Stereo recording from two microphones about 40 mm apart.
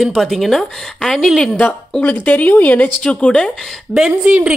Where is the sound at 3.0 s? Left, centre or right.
Left.